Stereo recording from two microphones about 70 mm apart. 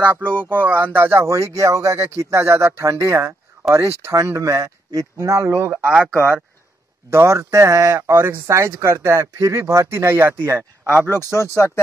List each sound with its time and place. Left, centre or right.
0.0 s speech: right
7.1 s speech: right
7.3 s speech: right
8.1 s speech: right
11.6 s speech: left